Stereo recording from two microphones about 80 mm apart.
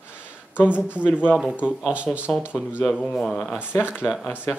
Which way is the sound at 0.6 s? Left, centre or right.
Centre.